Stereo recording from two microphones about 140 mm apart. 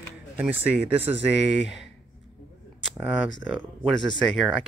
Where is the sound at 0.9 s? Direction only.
45° right (ahead or behind).